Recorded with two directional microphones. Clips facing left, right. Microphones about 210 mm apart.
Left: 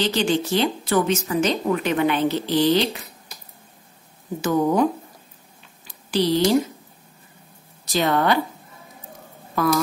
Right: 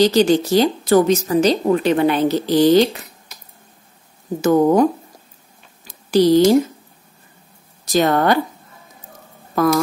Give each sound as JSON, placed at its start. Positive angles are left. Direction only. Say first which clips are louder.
{"t": 0.0, "sound": "speech", "louder": "right 8 dB", "side_deg": -40}
{"t": 4.4, "sound": "speech", "louder": "right 6 dB", "side_deg": -45}
{"t": 5.9, "sound": "a sound", "louder": "right 8 dB", "side_deg": -45}
{"t": 7.8, "sound": "a woman's voice", "louder": "right 5 dB", "side_deg": -45}